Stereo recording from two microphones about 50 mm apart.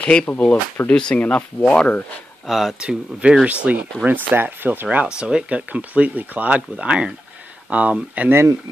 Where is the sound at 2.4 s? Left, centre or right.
Centre.